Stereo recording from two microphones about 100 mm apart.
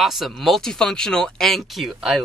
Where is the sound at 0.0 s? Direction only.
Centre (ahead or behind).